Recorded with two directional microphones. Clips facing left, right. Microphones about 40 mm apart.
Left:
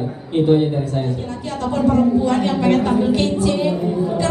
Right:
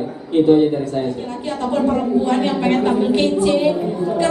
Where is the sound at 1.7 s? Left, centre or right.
Right.